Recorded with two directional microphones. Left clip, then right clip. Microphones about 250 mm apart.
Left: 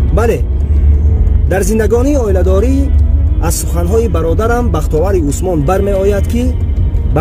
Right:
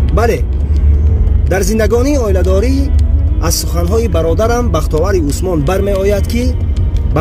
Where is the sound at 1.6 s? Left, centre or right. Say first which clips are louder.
Left 1 dB; left.